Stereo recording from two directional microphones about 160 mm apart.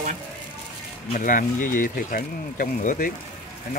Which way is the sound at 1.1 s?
55° left (ahead or behind).